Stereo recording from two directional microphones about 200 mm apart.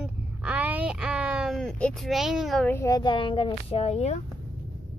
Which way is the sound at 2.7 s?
15° left (ahead or behind).